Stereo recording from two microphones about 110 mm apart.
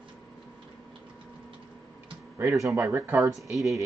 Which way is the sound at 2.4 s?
30° right (ahead or behind).